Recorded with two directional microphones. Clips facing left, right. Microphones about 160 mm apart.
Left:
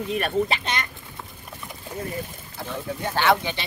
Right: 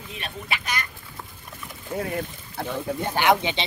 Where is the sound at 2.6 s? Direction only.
55° right (ahead or behind).